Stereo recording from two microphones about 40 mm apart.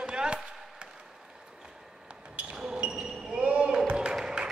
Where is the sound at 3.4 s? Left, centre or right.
Right.